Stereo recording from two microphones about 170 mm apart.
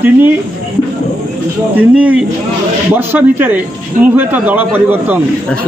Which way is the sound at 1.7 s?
10° right (ahead or behind).